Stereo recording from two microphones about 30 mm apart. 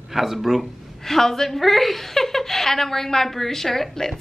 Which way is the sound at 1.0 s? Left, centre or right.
Centre.